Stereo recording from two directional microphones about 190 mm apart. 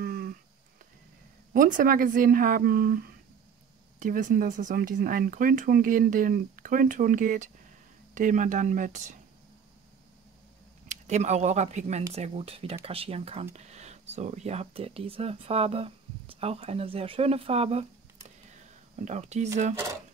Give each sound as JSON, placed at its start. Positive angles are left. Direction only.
{"t": 0.0, "sound": "a sound", "side_deg": -50}
{"t": 1.5, "sound": "speech", "side_deg": -45}
{"t": 10.9, "sound": "speech", "side_deg": -35}
{"t": 19.0, "sound": "speech", "side_deg": -35}